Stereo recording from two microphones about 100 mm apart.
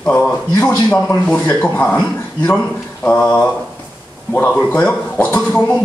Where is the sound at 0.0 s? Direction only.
10° left (ahead or behind).